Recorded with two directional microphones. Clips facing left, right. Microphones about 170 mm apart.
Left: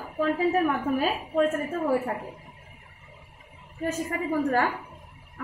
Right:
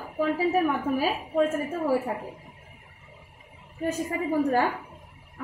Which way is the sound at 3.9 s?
15° right (ahead or behind).